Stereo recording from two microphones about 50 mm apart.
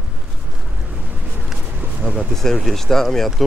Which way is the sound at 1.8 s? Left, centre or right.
Right.